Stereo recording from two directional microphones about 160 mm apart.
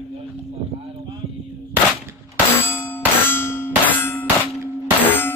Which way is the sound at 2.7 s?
15° left (ahead or behind).